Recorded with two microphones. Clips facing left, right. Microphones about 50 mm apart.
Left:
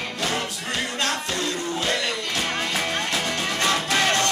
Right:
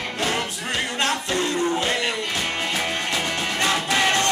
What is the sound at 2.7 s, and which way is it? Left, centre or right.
Music, centre.